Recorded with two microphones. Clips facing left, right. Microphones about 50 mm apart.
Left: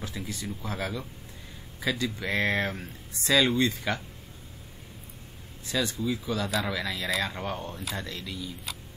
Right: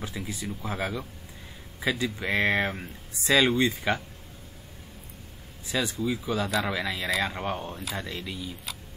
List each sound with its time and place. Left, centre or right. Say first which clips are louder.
0.1 s speech: right 1 dB; centre
0.4 s speech: right 2 dB; centre
5.7 s speech: right 1 dB; centre
7.7 s speech: right 1 dB; centre
8.0 s speech: right 1 dB; centre
8.7 s a sound: even; centre